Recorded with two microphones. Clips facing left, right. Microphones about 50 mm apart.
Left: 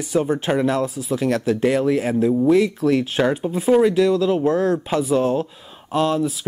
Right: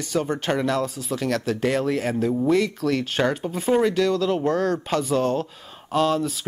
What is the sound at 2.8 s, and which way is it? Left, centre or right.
Speech, centre.